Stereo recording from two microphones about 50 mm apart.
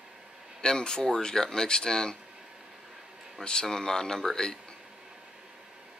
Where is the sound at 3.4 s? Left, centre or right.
Centre.